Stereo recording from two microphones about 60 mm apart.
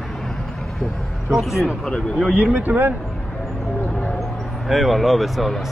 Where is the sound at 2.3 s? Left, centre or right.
Right.